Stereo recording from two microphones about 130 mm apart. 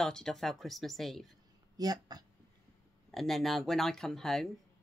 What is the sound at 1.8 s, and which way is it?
Speech, 30° right (ahead or behind).